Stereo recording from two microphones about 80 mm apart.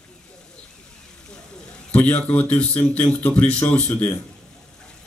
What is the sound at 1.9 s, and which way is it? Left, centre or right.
A man's voice, centre.